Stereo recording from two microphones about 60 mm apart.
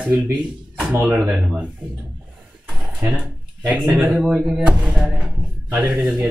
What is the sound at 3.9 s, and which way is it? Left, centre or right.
Speech, right.